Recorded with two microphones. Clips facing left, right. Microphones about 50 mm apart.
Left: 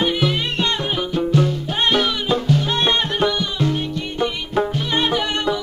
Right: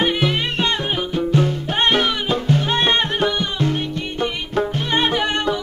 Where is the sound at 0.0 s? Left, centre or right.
Right.